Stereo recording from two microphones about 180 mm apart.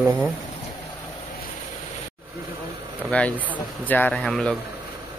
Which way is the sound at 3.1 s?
10° left (ahead or behind).